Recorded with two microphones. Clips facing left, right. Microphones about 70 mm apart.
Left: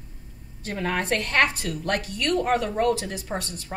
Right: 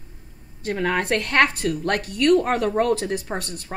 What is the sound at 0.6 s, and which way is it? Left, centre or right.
A woman's voice, right.